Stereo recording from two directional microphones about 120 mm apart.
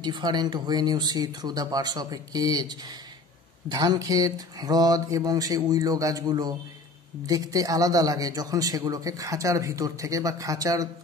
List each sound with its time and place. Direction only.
0.0 s a man's voice: 35° right (ahead or behind)